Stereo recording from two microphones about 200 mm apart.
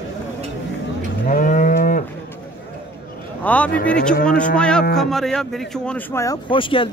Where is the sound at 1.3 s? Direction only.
40° left (ahead or behind).